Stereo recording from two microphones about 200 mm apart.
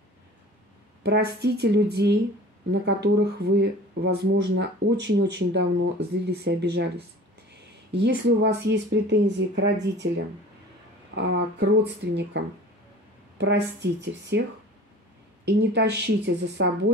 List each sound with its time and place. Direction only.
1.0 s speech: 55° right (ahead or behind)
11.1 s speech: 60° right (ahead or behind)